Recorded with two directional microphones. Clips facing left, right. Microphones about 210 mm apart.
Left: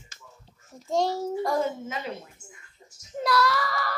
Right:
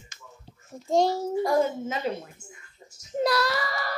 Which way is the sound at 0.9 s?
10° right (ahead or behind).